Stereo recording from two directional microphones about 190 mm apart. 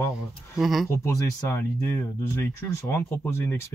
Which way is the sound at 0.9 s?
15° left (ahead or behind).